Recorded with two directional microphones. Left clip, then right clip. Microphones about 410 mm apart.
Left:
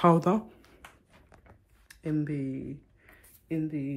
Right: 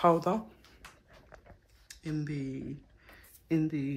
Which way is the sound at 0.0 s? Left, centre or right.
Centre.